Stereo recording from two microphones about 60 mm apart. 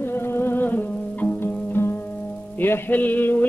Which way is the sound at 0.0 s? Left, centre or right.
Left.